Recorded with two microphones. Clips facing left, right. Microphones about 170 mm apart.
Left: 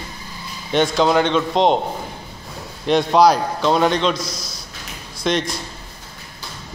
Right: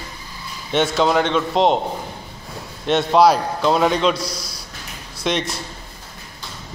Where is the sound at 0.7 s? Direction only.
5° right (ahead or behind).